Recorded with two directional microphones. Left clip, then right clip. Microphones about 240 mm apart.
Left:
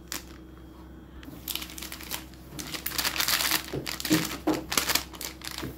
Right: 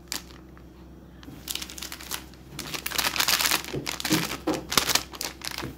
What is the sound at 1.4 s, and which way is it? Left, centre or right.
Crumpling, centre.